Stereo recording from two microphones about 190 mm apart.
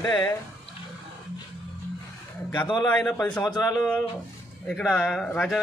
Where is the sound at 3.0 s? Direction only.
5° left (ahead or behind).